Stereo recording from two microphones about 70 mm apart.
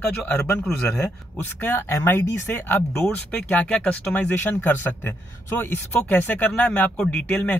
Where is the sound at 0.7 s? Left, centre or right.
Centre.